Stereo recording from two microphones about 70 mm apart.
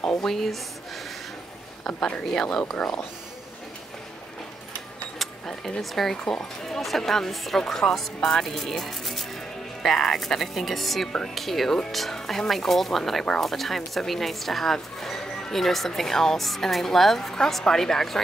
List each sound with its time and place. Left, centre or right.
0.2 s speech: centre
1.9 s speech: centre
5.2 s speech: centre